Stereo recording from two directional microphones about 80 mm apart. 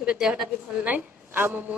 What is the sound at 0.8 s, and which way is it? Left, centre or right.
Speech, right.